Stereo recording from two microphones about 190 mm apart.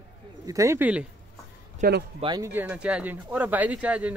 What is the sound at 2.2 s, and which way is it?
Speech, 25° right (ahead or behind).